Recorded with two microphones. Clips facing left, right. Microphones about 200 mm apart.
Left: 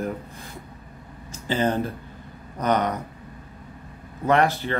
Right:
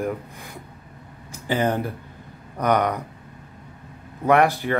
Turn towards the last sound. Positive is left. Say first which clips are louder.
# right 2 dB
turn(degrees=-15)  # may be behind; listen again after turning